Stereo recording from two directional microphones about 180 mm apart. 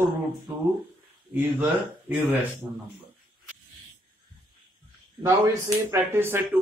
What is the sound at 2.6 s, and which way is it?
Speech, 10° right (ahead or behind).